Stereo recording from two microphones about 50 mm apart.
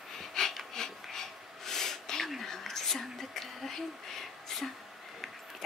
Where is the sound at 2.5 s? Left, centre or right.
Centre.